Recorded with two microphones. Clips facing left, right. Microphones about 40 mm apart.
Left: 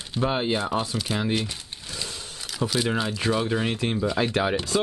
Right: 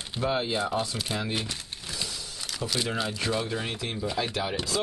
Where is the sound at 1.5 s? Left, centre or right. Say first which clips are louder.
Even; centre.